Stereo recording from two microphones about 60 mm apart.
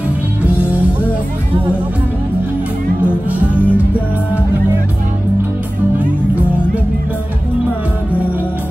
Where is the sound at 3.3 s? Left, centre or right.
Right.